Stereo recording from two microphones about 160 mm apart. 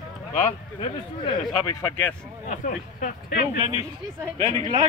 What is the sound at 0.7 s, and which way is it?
Speech, 30° left (ahead or behind).